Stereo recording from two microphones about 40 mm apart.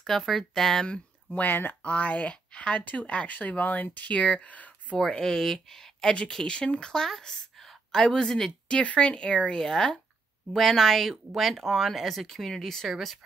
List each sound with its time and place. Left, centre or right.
0.0 s speech: centre
0.8 s speech: left
1.4 s speech: left
1.9 s speech: left
2.8 s speech: left
5.1 s speech: centre
8.6 s speech: left
10.5 s speech: centre